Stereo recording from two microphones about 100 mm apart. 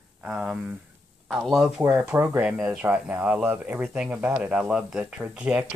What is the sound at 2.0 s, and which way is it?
Speech, 25° right (ahead or behind).